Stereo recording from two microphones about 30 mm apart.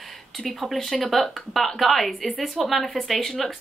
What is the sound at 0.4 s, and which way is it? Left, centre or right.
Speech, centre.